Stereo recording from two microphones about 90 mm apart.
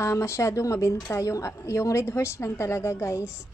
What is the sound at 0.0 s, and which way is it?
A woman's voice, 30° left (ahead or behind).